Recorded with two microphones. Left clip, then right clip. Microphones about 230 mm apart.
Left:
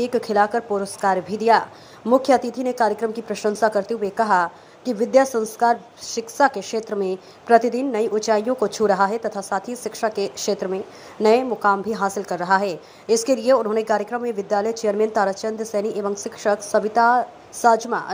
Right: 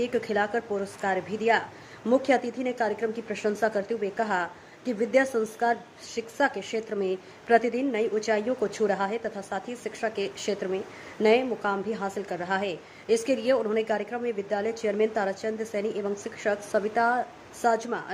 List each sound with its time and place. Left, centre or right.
0.0 s a woman's voice: centre